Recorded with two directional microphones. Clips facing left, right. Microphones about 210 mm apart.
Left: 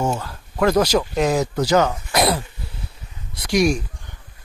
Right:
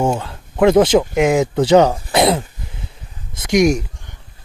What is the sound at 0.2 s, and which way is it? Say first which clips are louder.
Speech: right 6 dB; 25° right (ahead or behind).